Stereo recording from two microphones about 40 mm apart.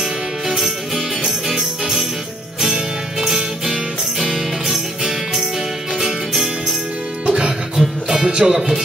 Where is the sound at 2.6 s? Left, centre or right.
Centre.